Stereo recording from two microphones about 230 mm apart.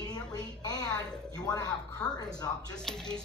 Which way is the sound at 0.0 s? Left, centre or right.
Centre.